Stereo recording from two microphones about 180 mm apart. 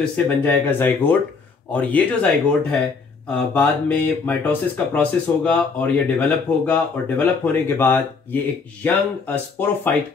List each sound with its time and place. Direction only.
0.0 s speech: 10° left (ahead or behind)